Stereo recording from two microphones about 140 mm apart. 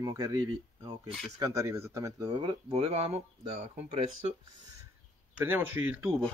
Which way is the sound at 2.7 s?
45° right (ahead or behind).